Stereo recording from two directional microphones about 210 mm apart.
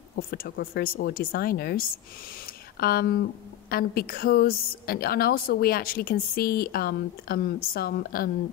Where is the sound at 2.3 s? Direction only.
45° left (ahead or behind).